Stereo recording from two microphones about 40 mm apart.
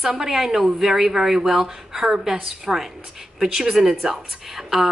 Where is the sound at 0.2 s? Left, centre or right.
Centre.